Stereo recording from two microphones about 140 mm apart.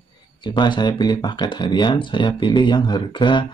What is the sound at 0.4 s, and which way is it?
Speech, 35° left (ahead or behind).